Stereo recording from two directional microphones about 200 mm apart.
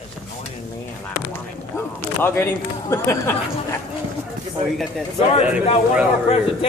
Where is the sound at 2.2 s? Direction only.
10° left (ahead or behind).